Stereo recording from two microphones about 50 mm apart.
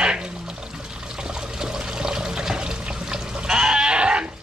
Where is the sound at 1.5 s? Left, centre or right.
Centre.